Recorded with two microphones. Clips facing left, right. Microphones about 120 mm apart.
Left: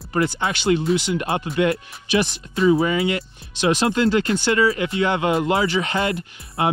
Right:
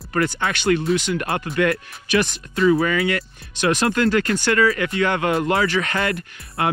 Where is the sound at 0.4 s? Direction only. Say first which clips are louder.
Even; 20° left (ahead or behind).